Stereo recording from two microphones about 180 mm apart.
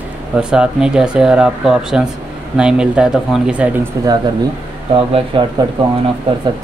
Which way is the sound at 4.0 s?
15° right (ahead or behind).